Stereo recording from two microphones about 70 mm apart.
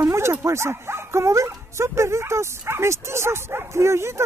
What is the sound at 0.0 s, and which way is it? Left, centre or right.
Speech, right.